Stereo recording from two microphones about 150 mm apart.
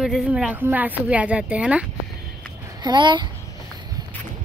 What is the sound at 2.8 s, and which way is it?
Speech, 30° right (ahead or behind).